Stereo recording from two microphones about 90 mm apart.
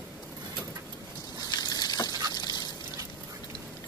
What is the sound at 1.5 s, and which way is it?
Vehicle, 50° left (ahead or behind).